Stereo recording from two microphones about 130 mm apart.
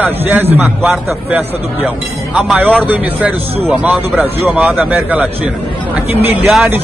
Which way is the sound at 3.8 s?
10° right (ahead or behind).